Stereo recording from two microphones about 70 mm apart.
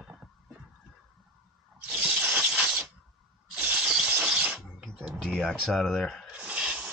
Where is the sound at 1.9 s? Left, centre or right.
Centre.